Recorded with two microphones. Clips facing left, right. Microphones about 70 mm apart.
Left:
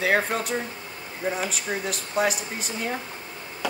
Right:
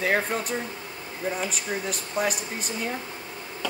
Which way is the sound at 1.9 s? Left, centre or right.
Centre.